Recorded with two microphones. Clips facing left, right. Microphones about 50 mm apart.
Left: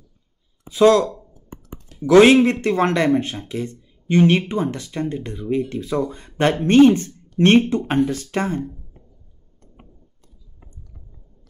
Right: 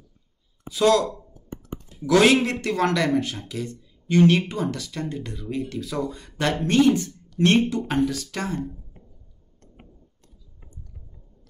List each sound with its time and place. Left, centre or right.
0.7 s speech: left
2.0 s speech: left